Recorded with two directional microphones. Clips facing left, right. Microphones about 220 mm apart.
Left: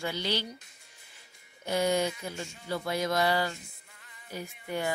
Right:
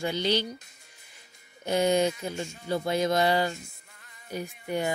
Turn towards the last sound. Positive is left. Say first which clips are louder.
# right 4 dB
turn(degrees=-15)  # may be behind; listen again after turning